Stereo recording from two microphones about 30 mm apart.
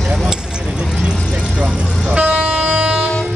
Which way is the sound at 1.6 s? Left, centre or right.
Right.